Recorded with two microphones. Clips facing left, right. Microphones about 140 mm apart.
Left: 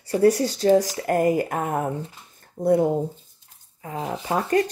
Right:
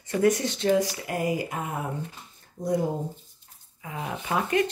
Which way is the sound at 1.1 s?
50° left (ahead or behind).